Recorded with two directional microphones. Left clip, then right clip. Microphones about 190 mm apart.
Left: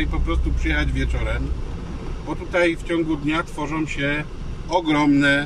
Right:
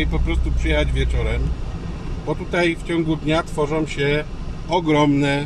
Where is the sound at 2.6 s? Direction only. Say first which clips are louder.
Even; 20° right (ahead or behind).